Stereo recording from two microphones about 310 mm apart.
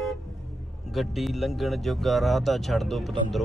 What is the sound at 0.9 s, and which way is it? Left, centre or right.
Speech, centre.